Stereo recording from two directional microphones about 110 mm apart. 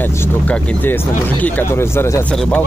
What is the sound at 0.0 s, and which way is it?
A man's voice, 20° left (ahead or behind).